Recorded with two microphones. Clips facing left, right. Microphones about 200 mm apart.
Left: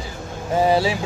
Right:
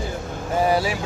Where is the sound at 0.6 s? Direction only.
25° left (ahead or behind).